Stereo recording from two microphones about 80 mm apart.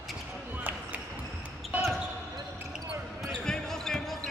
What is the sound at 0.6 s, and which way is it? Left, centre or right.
Basketball bounce, right.